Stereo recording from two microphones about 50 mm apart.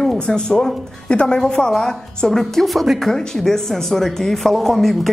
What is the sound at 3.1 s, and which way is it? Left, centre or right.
A man's voice, centre.